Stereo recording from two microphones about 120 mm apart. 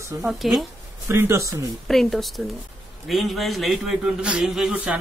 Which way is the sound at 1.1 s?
20° right (ahead or behind).